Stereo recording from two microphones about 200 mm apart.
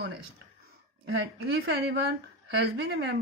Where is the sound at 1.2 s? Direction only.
55° right (ahead or behind).